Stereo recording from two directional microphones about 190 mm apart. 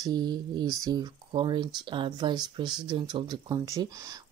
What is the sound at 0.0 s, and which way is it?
Speech, 20° right (ahead or behind).